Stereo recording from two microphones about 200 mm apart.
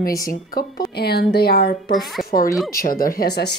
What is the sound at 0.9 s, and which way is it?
A woman's voice, 55° left (ahead or behind).